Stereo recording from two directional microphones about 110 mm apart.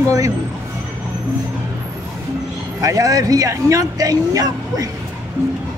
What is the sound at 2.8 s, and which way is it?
Speech, 30° right (ahead or behind).